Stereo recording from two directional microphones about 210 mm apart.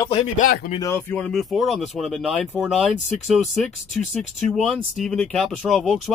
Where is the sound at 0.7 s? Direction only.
15° left (ahead or behind).